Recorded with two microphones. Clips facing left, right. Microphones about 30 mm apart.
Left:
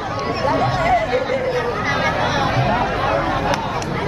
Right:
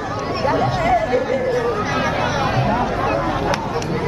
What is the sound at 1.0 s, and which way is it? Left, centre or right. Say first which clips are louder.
Speech: right 1 dB; left.